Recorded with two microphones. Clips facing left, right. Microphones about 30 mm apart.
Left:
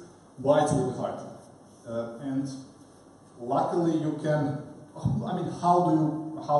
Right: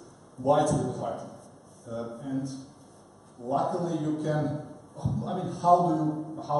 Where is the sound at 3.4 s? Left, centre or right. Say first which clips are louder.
Left 3 dB; centre.